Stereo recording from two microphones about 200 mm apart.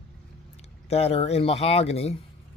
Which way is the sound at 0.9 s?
30° left (ahead or behind).